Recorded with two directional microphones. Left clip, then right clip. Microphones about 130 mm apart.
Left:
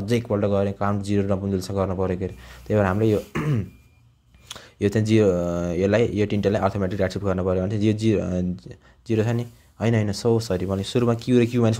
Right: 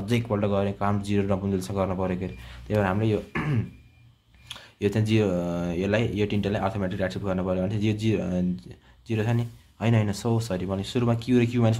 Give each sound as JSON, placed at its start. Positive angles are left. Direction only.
{"t": 0.0, "sound": "speech", "side_deg": 30}
{"t": 4.5, "sound": "speech", "side_deg": 45}